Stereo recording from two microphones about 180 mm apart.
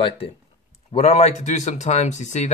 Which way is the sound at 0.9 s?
35° left (ahead or behind).